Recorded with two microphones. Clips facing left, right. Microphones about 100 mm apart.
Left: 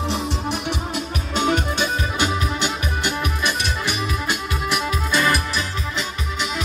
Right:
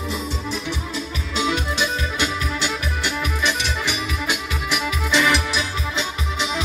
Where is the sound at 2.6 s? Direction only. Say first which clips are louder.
Left 1 dB; 50° left (ahead or behind).